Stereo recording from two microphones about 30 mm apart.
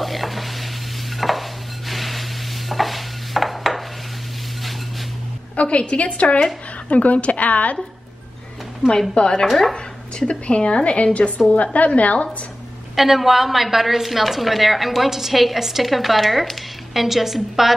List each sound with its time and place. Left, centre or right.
0.0 s stir: centre
1.1 s dishes: centre
1.9 s a sound: centre
5.6 s a woman's voice: left
9.1 s speech: left
10.1 s a woman's voice: left
11.1 s a woman's voice: left
12.9 s a woman's voice: centre